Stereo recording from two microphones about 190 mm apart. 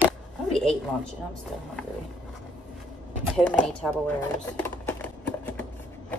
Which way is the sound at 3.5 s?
5° left (ahead or behind).